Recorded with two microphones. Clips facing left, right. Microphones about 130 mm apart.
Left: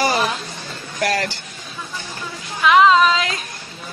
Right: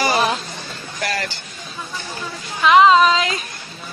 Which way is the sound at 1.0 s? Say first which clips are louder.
Left 4 dB; 65° left (ahead or behind).